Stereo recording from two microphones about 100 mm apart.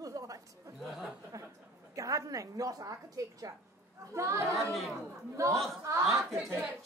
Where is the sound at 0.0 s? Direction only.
35° right (ahead or behind).